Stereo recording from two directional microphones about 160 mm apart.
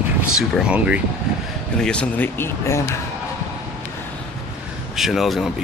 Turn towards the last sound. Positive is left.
turn(degrees=0)  # may be behind; listen again after turning